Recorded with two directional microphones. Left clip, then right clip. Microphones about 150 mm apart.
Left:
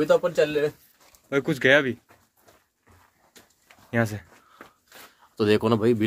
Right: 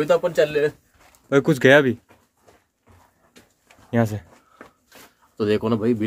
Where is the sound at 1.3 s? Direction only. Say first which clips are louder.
Right 5 dB; 70° right (ahead or behind).